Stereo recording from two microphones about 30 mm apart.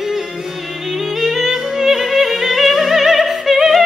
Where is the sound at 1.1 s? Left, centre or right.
Centre.